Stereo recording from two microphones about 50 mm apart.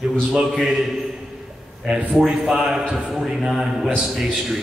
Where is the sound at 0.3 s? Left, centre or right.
Centre.